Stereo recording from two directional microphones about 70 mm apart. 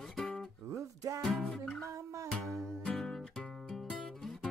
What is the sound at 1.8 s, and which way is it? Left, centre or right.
Music, right.